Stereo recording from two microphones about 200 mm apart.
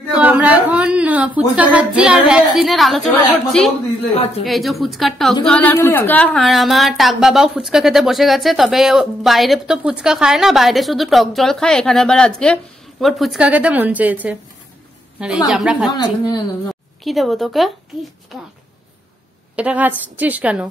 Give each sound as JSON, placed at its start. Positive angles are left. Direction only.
{"t": 0.1, "sound": "speech", "side_deg": -10}
{"t": 4.5, "sound": "a woman's voice", "side_deg": 0}
{"t": 15.9, "sound": "speech", "side_deg": 20}
{"t": 17.0, "sound": "a woman's voice", "side_deg": 0}
{"t": 19.5, "sound": "a woman's voice", "side_deg": -5}